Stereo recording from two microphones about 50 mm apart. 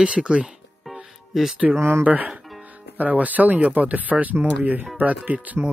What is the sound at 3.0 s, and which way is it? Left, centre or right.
Speech, right.